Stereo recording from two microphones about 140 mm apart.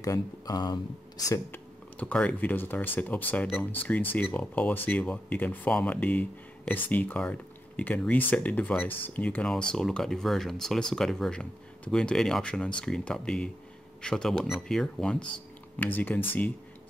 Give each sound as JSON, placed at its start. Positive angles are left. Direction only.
{"t": 0.0, "sound": "speech", "side_deg": 25}
{"t": 1.5, "sound": "speech", "side_deg": 10}